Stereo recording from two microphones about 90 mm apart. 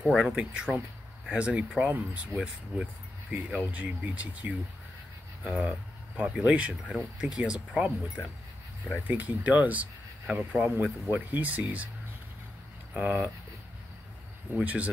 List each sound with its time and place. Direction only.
0.0 s speech: centre (ahead or behind)
0.3 s speech: 10° right (ahead or behind)
9.0 s speech: 20° right (ahead or behind)
10.8 s speech: 15° right (ahead or behind)
12.9 s speech: 15° right (ahead or behind)
14.5 s speech: 15° right (ahead or behind)